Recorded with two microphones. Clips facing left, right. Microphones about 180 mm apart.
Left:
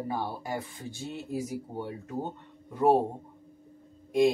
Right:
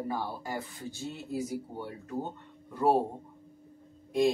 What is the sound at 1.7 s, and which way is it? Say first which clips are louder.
Speech: left 2 dB; 15° left (ahead or behind).